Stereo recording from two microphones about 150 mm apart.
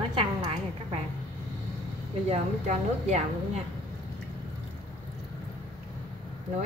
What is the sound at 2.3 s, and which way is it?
Speech, 50° right (ahead or behind).